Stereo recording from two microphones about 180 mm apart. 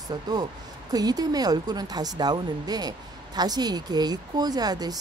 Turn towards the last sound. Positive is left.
turn(degrees=-20)  # may be behind; listen again after turning